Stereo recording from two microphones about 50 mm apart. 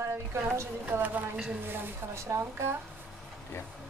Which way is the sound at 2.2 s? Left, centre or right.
Right.